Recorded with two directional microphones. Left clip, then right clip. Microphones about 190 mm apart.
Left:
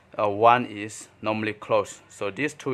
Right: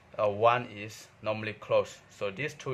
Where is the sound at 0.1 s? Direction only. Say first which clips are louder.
Left 6 dB; 35° left (ahead or behind).